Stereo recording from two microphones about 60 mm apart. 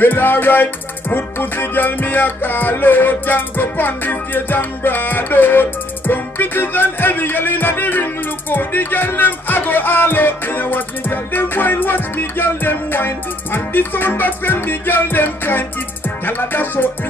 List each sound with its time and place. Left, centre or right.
0.0 s music: left